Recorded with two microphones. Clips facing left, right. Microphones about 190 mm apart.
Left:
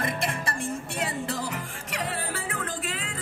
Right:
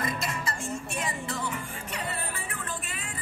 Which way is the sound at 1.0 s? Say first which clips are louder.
Left 5 dB; 70° left (ahead or behind).